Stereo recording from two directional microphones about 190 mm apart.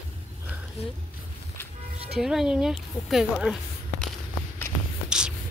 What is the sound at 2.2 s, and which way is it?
A woman's voice, centre (ahead or behind).